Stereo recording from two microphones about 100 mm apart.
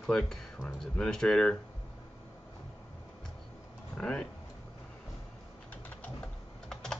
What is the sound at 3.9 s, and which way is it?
Speech, 10° left (ahead or behind).